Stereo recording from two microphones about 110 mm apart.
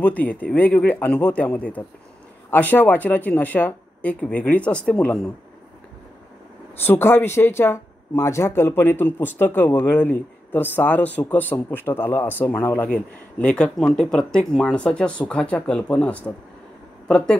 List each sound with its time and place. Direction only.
0.0 s speech: 15° left (ahead or behind)
6.8 s speech: 20° left (ahead or behind)